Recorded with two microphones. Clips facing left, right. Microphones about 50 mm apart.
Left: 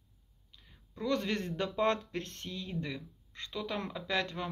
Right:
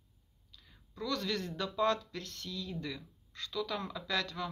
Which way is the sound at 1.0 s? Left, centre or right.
Left.